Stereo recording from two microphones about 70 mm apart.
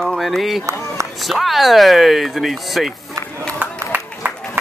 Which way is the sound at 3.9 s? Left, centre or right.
Right.